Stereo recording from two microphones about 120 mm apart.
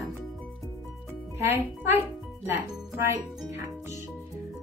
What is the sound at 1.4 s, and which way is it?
Speech, 20° right (ahead or behind).